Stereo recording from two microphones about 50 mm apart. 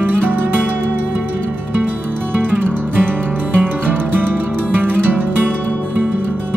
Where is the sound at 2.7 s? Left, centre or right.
Right.